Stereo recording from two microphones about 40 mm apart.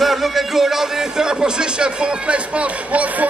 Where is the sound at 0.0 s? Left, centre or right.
Centre.